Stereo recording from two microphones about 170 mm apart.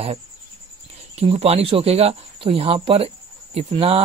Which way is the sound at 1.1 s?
35° right (ahead or behind).